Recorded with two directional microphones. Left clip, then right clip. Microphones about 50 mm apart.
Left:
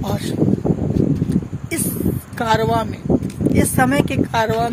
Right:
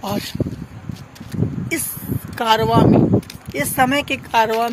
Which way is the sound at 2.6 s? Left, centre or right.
Left.